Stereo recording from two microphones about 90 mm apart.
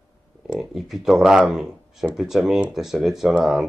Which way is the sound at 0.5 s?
5° right (ahead or behind).